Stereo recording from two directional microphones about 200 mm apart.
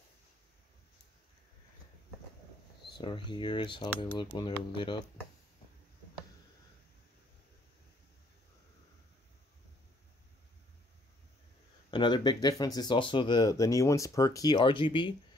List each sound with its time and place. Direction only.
3.0 s speech: 25° left (ahead or behind)
11.9 s speech: 25° left (ahead or behind)